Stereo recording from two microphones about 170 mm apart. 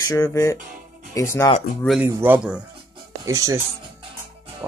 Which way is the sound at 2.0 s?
10° right (ahead or behind).